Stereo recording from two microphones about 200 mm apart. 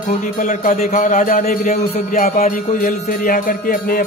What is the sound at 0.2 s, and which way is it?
A man's voice, 40° left (ahead or behind).